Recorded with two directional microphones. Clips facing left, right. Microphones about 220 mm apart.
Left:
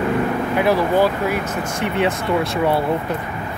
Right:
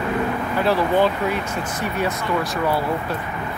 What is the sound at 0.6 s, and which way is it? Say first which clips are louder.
Speech: left 2 dB; 10° left (ahead or behind).